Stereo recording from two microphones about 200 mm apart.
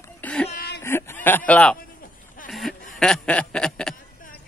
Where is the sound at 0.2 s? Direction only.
5° left (ahead or behind).